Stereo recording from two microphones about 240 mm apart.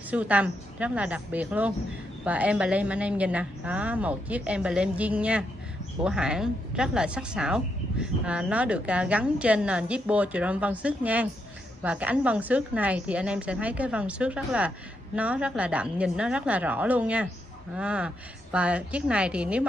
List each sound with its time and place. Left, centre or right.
0.1 s a woman's voice: centre